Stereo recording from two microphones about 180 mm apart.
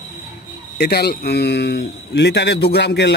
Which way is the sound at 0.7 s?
60° left (ahead or behind).